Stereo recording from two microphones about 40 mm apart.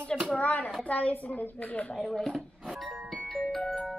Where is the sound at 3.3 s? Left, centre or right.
Centre.